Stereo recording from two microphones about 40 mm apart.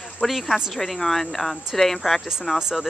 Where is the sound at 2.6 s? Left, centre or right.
Centre.